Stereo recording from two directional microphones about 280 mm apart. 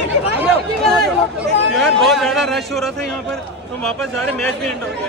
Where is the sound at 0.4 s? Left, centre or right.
Centre.